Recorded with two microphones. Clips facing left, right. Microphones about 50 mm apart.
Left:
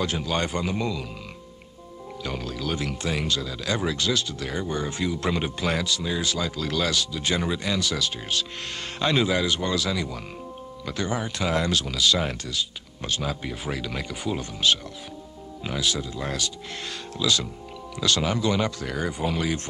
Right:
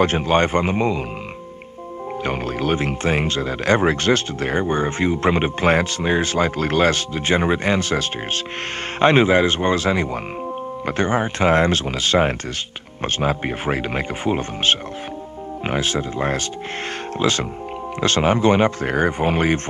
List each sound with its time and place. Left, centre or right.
0.0 s speech: right
2.2 s speech: right